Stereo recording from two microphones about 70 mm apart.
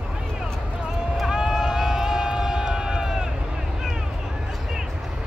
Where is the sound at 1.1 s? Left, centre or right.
Centre.